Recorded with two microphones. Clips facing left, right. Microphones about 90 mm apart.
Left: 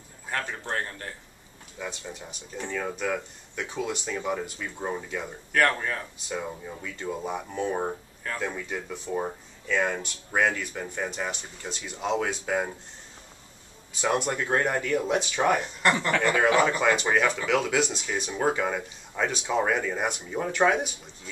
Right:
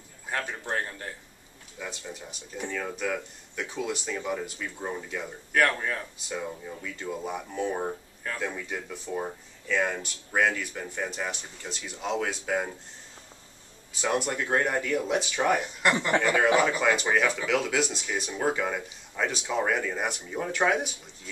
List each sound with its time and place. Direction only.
0.3 s a man's voice: 10° right (ahead or behind)
2.7 s speech: 5° left (ahead or behind)
6.3 s speech: 15° left (ahead or behind)
7.0 s speech: centre (ahead or behind)
7.7 s speech: 15° left (ahead or behind)
8.3 s speech: 5° left (ahead or behind)
14.0 s speech: centre (ahead or behind)
15.6 s a man's voice: 10° right (ahead or behind)